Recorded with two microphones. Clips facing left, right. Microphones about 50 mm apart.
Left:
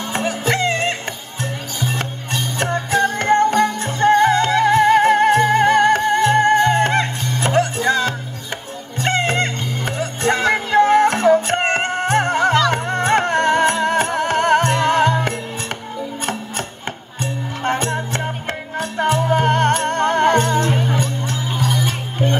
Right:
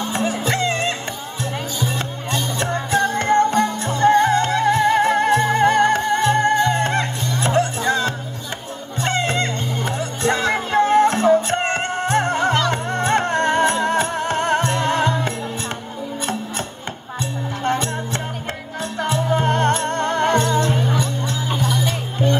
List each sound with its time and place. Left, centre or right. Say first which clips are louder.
0.0 s music: even; left
17.2 s music: left 1 dB; left